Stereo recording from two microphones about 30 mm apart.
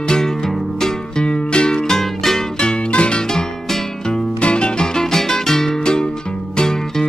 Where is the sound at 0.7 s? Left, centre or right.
Centre.